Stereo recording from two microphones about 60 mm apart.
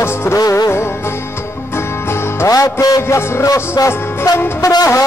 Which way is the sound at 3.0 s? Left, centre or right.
Left.